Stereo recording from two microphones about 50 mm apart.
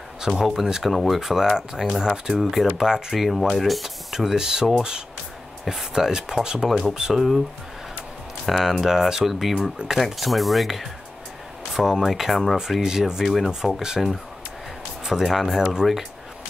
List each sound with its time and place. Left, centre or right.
0.2 s speech: centre
0.8 s speech: centre
5.7 s speech: centre
8.5 s speech: centre
12.8 s speech: centre
13.2 s speech: centre
13.5 s speech: centre
15.0 s speech: centre